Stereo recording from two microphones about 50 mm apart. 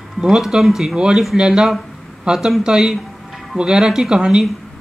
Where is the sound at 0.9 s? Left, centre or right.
Centre.